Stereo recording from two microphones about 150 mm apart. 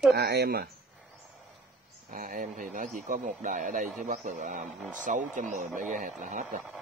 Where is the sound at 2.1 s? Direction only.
60° right (ahead or behind).